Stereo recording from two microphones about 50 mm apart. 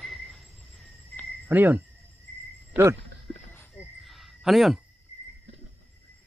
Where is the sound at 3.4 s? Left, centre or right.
Left.